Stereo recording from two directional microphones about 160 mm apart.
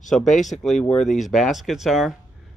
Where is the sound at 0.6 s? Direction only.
Centre (ahead or behind).